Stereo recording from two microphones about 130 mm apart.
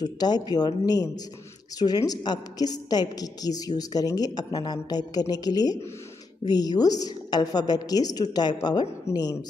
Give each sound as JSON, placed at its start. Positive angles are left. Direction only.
{"t": 0.0, "sound": "a woman's voice", "side_deg": 30}